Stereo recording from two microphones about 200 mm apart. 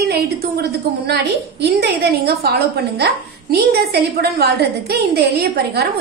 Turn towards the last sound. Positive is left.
turn(degrees=-55)  # may be behind; listen again after turning